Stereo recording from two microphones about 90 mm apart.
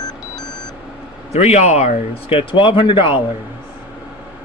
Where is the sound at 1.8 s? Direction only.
90° left; by 3.2 s 65° left (ahead or behind).